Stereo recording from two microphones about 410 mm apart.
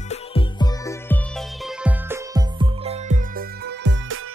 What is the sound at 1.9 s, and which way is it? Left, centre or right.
Music, centre.